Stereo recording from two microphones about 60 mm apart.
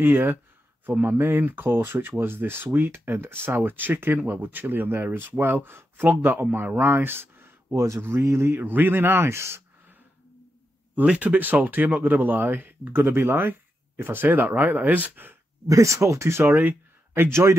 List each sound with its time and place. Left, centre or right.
0.0 s speech: right
7.7 s speech: right
8.2 s speech: right
8.5 s speech: right
11.0 s speech: right
15.6 s speech: right